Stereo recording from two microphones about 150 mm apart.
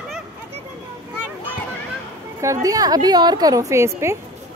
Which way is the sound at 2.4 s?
20° right (ahead or behind).